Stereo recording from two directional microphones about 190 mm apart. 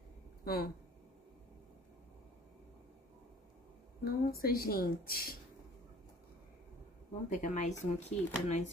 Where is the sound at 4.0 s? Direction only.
50° left (ahead or behind).